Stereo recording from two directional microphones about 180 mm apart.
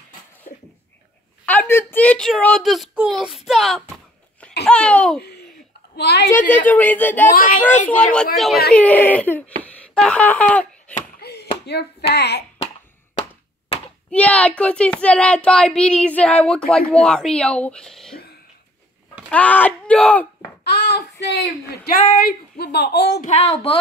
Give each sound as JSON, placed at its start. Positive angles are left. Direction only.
{"t": 0.5, "sound": "a sound", "side_deg": 50}
{"t": 1.4, "sound": "speech", "side_deg": 10}
{"t": 5.9, "sound": "speech", "side_deg": 65}
{"t": 6.7, "sound": "speech", "side_deg": 10}
{"t": 7.3, "sound": "speech", "side_deg": 50}
{"t": 7.8, "sound": "speech", "side_deg": 5}
{"t": 9.6, "sound": "a sound", "side_deg": 5}
{"t": 11.1, "sound": "a sound", "side_deg": 65}
{"t": 14.1, "sound": "speech", "side_deg": 5}
{"t": 19.2, "sound": "speech", "side_deg": 10}
{"t": 20.7, "sound": "speech", "side_deg": 65}
{"t": 22.0, "sound": "speech", "side_deg": 50}
{"t": 23.2, "sound": "speech", "side_deg": 35}